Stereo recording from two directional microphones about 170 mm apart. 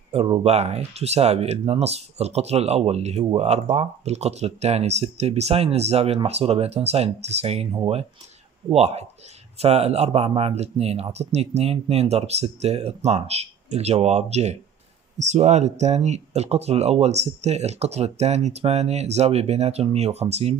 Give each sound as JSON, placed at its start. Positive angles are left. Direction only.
{"t": 0.1, "sound": "speech", "side_deg": -35}
{"t": 8.7, "sound": "speech", "side_deg": -40}